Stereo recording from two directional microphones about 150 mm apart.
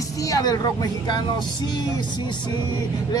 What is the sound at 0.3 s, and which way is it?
Speech, 25° left (ahead or behind).